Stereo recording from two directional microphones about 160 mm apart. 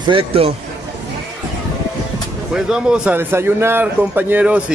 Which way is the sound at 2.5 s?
5° right (ahead or behind).